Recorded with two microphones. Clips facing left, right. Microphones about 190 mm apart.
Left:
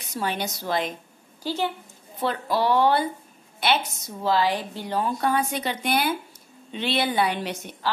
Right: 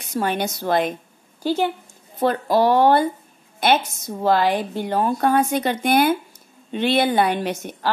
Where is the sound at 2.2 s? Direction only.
45° right (ahead or behind).